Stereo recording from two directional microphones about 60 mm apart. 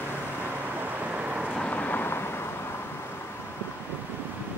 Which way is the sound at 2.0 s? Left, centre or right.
Left.